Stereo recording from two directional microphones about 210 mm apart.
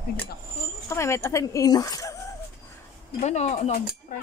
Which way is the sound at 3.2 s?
30° left (ahead or behind).